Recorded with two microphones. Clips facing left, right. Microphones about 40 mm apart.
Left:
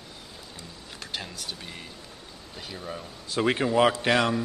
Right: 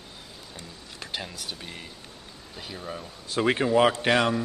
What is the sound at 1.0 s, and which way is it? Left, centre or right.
Speech, centre.